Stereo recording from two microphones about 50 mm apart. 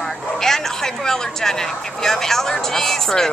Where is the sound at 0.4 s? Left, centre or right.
Centre.